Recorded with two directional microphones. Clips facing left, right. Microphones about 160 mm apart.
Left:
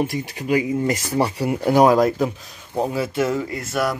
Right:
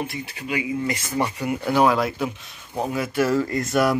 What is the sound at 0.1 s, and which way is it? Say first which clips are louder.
Speech: left 7 dB; 40° left (ahead or behind).